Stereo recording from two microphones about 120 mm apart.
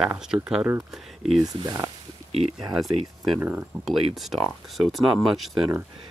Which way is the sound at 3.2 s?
10° right (ahead or behind).